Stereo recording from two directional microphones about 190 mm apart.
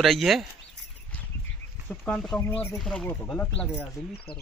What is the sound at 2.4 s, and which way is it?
Speech, 10° left (ahead or behind).